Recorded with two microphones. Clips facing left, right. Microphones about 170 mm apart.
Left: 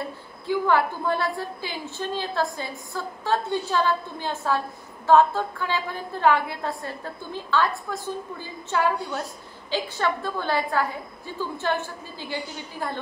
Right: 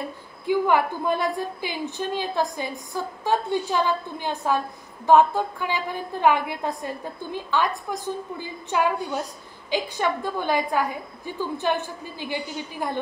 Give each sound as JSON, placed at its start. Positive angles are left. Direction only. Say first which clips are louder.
{"t": 0.5, "sound": "a woman's voice", "louder": "right 1 dB", "side_deg": -15}